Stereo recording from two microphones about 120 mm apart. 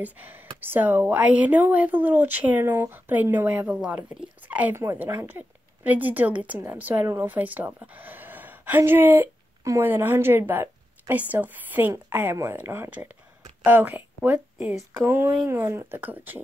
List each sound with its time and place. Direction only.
0.0 s a woman's voice: 15° right (ahead or behind)